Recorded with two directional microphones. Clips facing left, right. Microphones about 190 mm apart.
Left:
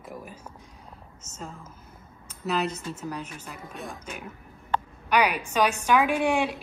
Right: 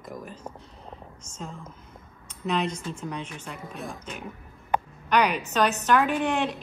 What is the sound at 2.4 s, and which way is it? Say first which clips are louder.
Speech: even; 5° left (ahead or behind).